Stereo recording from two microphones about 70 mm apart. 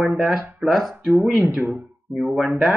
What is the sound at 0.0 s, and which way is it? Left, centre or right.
Speech, centre.